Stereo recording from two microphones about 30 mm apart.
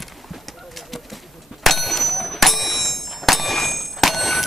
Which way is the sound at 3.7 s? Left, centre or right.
Centre.